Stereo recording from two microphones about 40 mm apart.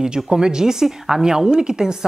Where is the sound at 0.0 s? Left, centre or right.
Centre.